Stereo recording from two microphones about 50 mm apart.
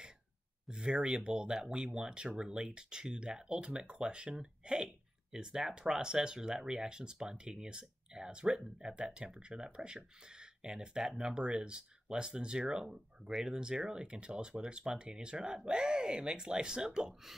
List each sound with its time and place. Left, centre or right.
0.7 s speech: centre